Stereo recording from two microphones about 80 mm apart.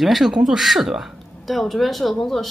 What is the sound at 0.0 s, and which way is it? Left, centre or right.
Speech, centre.